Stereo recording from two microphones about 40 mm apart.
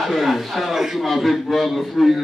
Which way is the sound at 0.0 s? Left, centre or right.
Centre.